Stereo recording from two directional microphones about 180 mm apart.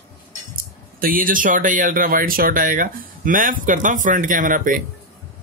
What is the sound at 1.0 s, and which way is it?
Speech, 50° right (ahead or behind).